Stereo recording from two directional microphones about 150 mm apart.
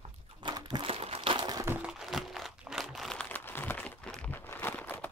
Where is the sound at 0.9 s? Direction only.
40° right (ahead or behind); by 1.7 s 25° right (ahead or behind).